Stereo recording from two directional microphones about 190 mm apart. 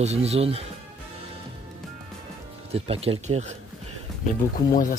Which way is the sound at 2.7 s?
30° right (ahead or behind).